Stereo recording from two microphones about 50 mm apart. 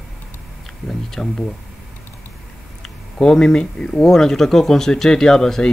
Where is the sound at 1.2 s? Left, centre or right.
Centre.